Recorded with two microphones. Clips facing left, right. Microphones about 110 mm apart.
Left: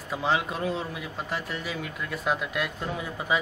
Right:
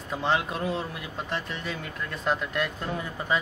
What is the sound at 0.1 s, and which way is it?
Speech, centre (ahead or behind).